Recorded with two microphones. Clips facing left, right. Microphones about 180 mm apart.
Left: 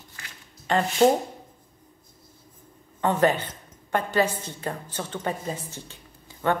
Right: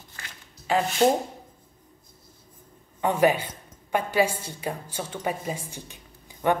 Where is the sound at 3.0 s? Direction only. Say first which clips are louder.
Even; 10° right (ahead or behind).